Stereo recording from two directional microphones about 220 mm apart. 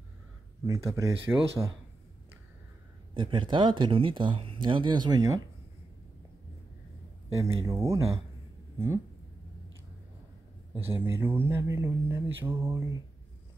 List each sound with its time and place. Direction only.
0.7 s speech: 15° right (ahead or behind)
3.2 s speech: 20° right (ahead or behind)
7.3 s speech: 15° right (ahead or behind)
10.7 s speech: 10° right (ahead or behind)